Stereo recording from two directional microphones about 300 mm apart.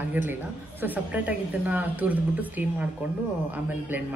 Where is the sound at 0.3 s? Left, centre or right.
Centre.